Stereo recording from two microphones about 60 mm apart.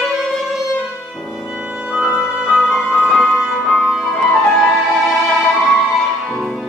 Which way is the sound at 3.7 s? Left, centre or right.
Centre.